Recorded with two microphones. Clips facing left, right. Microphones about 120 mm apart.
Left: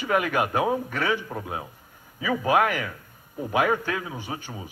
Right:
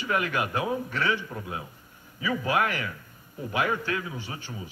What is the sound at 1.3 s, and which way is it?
Speech, 30° left (ahead or behind).